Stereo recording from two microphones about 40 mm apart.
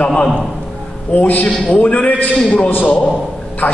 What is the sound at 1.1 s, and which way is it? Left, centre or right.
A man's voice, left.